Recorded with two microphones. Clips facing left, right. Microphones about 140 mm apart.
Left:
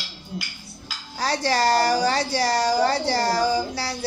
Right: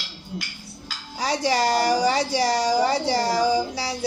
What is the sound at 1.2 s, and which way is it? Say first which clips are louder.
Speech: even; 20° right (ahead or behind).